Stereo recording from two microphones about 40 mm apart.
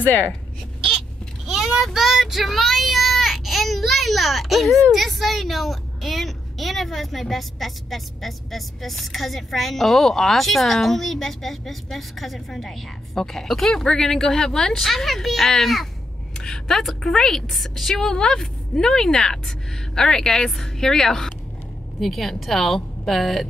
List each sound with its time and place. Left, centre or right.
0.0 s speech: left
1.5 s child singing: centre
4.9 s a woman's voice: centre